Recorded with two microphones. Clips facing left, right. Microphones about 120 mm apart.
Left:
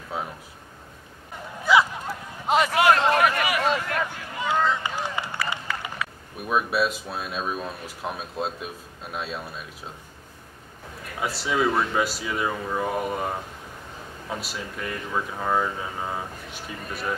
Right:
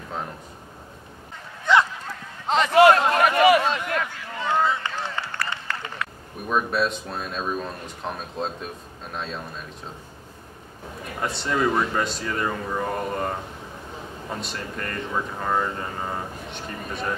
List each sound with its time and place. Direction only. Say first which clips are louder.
0.1 s speech: left 1 dB; 5° left (ahead or behind)
1.6 s a sound: even; 5° left (ahead or behind)
2.7 s speech: right 7 dB; 30° right (ahead or behind)
3.7 s a sound: even; 15° left (ahead or behind)
4.8 s run: left 1 dB; 10° left (ahead or behind)
6.5 s speech: even; 5° left (ahead or behind)
11.1 s speech: even; 5° left (ahead or behind)